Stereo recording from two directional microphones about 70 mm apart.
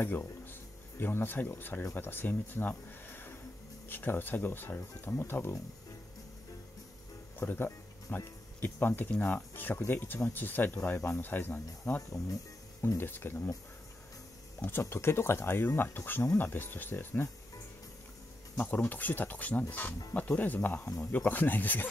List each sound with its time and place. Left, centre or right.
0.0 s speech: left
7.3 s speech: left
14.7 s speech: left
18.6 s speech: left